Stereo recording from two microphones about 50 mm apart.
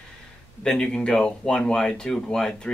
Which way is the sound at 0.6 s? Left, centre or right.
Centre.